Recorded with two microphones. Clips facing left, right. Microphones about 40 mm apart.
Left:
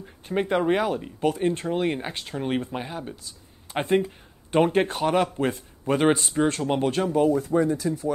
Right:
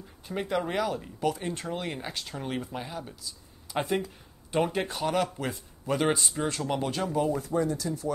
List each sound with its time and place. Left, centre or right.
0.0 s speech: left